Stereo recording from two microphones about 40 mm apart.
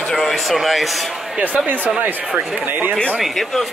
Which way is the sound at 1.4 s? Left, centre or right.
Right.